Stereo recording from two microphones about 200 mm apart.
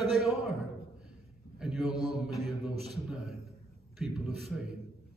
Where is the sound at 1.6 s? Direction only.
Centre (ahead or behind).